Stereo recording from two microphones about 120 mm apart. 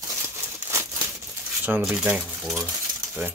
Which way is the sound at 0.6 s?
20° right (ahead or behind).